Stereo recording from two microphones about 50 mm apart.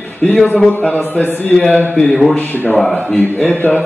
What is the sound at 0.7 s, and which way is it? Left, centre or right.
A man's voice, left.